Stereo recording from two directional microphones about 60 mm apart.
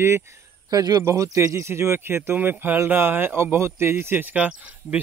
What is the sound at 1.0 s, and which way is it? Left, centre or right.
Speech, right.